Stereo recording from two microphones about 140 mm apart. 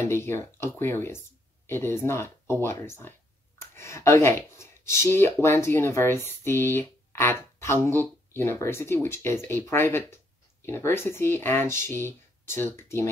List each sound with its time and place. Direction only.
0.1 s speech: 15° left (ahead or behind)